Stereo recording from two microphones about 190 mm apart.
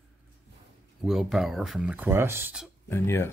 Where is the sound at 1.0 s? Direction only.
Centre (ahead or behind).